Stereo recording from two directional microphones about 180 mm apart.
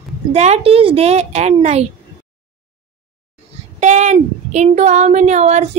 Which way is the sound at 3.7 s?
40° right (ahead or behind).